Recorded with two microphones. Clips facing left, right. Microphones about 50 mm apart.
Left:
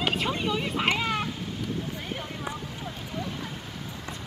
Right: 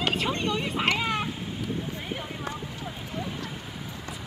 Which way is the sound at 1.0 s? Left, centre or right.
Centre.